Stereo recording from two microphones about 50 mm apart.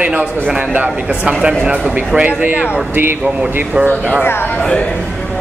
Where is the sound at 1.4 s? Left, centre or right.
Centre.